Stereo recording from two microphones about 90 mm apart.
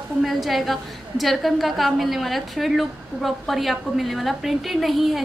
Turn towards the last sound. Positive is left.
turn(degrees=0)  # may be behind; listen again after turning